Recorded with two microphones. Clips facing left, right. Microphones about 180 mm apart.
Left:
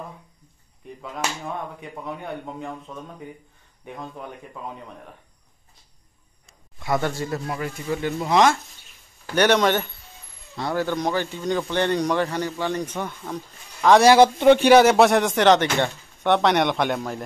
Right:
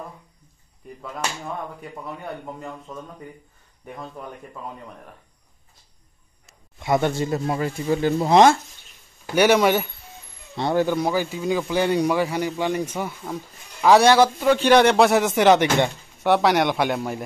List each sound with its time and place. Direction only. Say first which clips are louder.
1.8 s speech: left 1 dB; centre (ahead or behind)
6.8 s speech: right 3 dB; 20° right (ahead or behind)
9.2 s speech: right 2 dB; 10° right (ahead or behind)
10.5 s speech: right 4 dB; 20° right (ahead or behind)
11.0 s speech: right 2 dB; 5° right (ahead or behind)
14.1 s a man's voice: left 3 dB; 20° left (ahead or behind)
14.7 s speech: left 1 dB; 5° left (ahead or behind)